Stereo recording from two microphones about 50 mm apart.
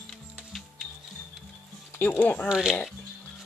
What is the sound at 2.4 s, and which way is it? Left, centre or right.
Speech, centre.